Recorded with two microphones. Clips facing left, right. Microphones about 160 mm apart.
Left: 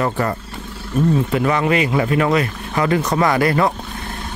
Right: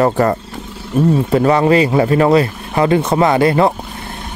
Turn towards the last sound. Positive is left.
turn(degrees=-25)  # may be behind; listen again after turning